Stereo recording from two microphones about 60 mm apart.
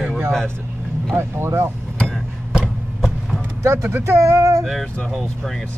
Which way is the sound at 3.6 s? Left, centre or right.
Right.